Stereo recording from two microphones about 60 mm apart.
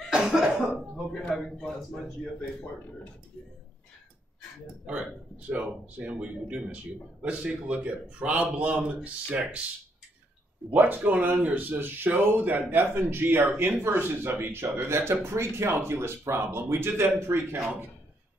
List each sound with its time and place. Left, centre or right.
0.1 s cough: centre
1.3 s a man's voice: centre
4.8 s speech: right
10.7 s speech: right